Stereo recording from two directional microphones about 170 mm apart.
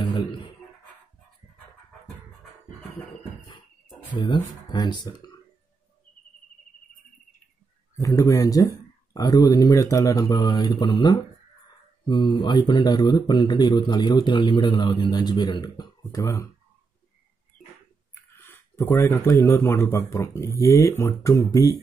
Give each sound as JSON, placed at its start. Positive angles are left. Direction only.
{"t": 4.1, "sound": "speech", "side_deg": 30}
{"t": 8.0, "sound": "speech", "side_deg": 20}
{"t": 18.4, "sound": "speech", "side_deg": 15}